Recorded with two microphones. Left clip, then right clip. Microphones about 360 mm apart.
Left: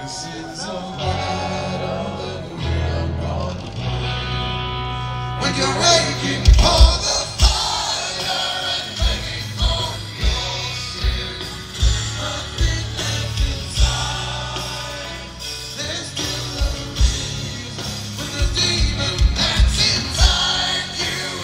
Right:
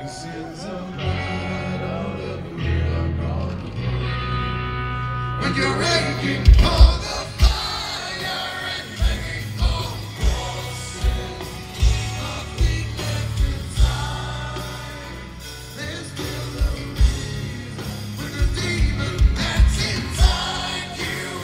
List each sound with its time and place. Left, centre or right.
1.1 s music: centre
4.1 s music: centre
12.6 s music: centre
18.6 s music: centre